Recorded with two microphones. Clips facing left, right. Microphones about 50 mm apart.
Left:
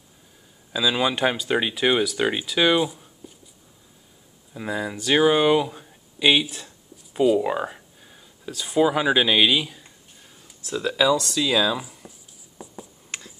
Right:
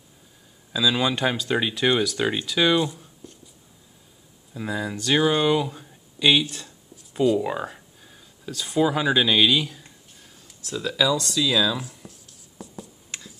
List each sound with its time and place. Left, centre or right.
0.7 s speech: centre
4.6 s speech: centre
11.7 s speech: centre
12.6 s writing: centre